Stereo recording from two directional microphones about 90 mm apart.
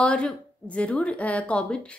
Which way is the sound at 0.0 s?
15° left (ahead or behind).